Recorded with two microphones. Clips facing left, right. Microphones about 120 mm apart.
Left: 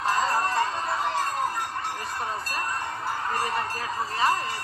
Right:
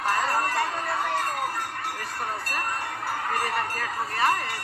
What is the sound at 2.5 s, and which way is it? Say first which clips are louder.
Speech: even; 25° left (ahead or behind).